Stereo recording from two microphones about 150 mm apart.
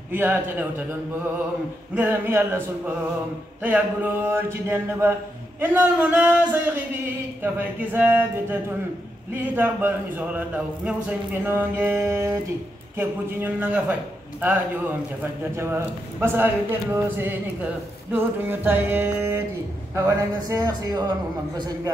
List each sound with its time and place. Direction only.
0.1 s speech: 10° right (ahead or behind)
15.5 s speech: 15° right (ahead or behind)